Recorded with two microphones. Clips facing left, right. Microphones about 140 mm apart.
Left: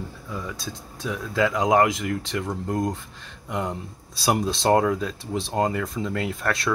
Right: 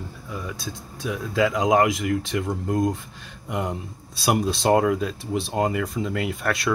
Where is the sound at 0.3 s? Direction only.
20° right (ahead or behind).